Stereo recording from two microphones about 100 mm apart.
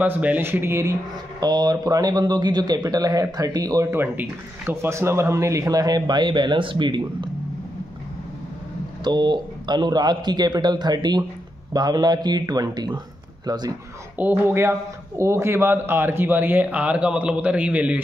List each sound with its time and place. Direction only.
0.0 s speech: 15° right (ahead or behind)
1.4 s a man's voice: 45° right (ahead or behind)
3.9 s a man's voice: 20° right (ahead or behind); by 7.2 s 50° right (ahead or behind)
9.0 s a man's voice: 50° right (ahead or behind)
14.1 s speech: 20° right (ahead or behind)